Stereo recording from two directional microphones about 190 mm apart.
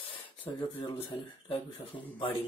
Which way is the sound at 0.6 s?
25° left (ahead or behind).